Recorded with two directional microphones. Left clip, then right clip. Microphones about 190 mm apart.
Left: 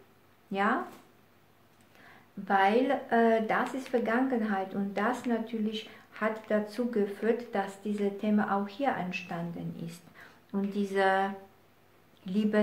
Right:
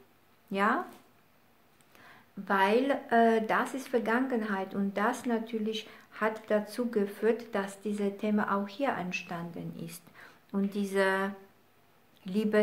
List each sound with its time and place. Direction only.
0.5 s speech: 35° right (ahead or behind)
2.0 s speech: 40° right (ahead or behind)